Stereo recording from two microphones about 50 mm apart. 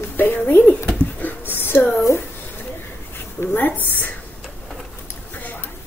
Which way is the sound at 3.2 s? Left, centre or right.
Left.